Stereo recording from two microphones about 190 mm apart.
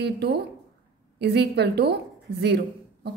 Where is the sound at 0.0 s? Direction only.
60° right (ahead or behind).